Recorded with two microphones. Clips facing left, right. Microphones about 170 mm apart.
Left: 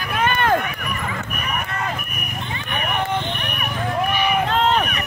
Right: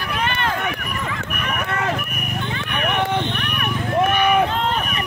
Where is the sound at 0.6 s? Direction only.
80° right.